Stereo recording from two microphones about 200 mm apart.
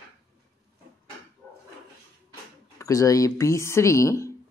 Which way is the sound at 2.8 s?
15° left (ahead or behind).